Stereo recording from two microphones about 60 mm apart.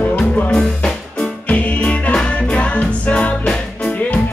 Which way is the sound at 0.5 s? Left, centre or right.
Centre.